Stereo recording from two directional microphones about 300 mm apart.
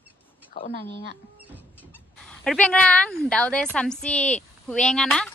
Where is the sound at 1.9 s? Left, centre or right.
Centre.